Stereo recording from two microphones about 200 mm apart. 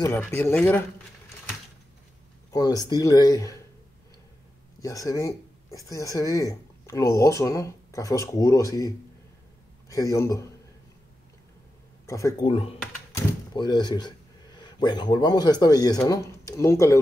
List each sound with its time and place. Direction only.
0.0 s speech: 15° left (ahead or behind)
2.5 s speech: 20° left (ahead or behind)
4.8 s speech: 15° left (ahead or behind)
12.1 s speech: 15° left (ahead or behind)
12.4 s speech: 30° left (ahead or behind)
13.1 s door: 20° left (ahead or behind)
14.6 s speech: 20° left (ahead or behind)